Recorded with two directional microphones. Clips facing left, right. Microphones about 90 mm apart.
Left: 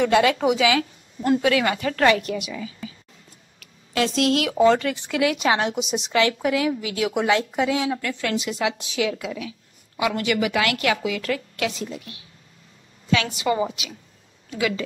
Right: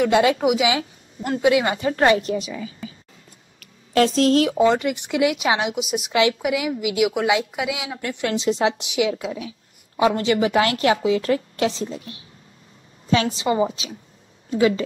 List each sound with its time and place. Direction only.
0.1 s a woman's voice: 20° right (ahead or behind)
0.4 s speech: 10° right (ahead or behind)
0.7 s a woman's voice: 20° right (ahead or behind)
3.5 s a sound: 45° right (ahead or behind)
4.6 s speech: 15° right (ahead or behind)
6.1 s speech: 15° right (ahead or behind)
8.0 s a woman's voice: 25° right (ahead or behind)
8.8 s a woman's voice: 20° right (ahead or behind)
9.1 s a woman's voice: 30° right (ahead or behind)